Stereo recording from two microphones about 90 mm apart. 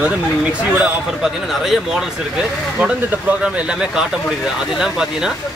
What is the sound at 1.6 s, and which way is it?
Speech, 5° right (ahead or behind).